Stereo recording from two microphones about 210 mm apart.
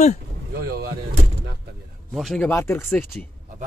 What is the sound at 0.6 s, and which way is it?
Speech, 45° right (ahead or behind).